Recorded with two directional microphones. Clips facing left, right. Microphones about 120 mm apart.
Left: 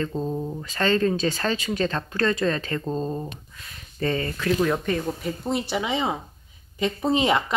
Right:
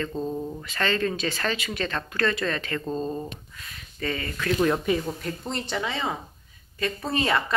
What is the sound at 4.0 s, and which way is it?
Speech, 30° left (ahead or behind).